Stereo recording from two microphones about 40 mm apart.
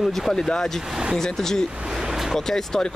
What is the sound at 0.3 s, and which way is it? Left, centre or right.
Speech, centre.